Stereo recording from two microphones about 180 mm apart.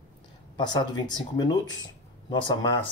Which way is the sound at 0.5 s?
25° left (ahead or behind).